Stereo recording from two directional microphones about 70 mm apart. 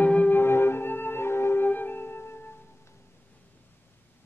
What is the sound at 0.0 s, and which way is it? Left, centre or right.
Music, left.